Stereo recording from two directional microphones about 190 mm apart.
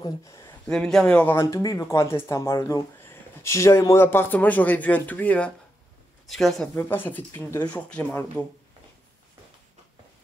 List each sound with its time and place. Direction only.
0.0 s speech: 15° left (ahead or behind)
0.7 s speech: 5° left (ahead or behind)
6.7 s speech: 10° left (ahead or behind)